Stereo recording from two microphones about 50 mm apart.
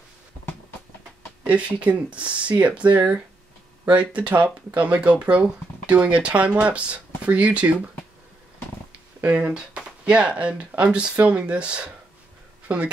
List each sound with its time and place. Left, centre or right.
1.4 s speech: right
9.2 s speech: right
9.5 s speech: centre